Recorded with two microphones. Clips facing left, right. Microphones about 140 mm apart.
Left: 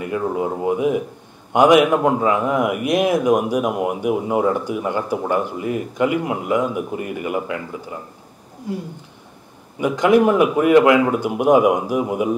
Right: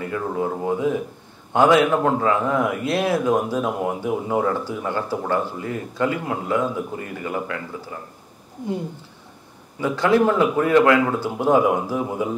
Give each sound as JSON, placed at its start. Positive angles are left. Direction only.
{"t": 0.0, "sound": "speech", "side_deg": 15}
{"t": 9.8, "sound": "speech", "side_deg": 15}